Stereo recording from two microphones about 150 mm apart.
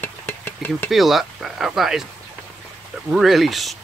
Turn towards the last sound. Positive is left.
turn(degrees=0)  # may be behind; listen again after turning